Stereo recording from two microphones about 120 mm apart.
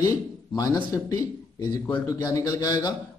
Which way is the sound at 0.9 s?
30° left (ahead or behind).